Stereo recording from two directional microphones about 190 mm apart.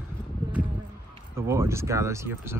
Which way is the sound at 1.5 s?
15° right (ahead or behind).